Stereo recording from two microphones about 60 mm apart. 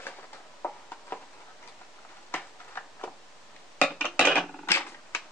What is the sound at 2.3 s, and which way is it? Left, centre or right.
Tick-tock, left.